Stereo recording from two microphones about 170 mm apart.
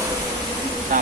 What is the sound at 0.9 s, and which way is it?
Speech, 55° right (ahead or behind).